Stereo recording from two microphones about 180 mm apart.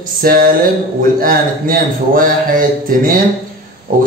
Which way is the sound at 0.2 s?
55° right (ahead or behind).